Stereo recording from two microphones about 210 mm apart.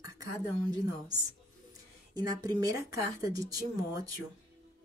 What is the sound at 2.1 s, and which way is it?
Speech, 20° right (ahead or behind).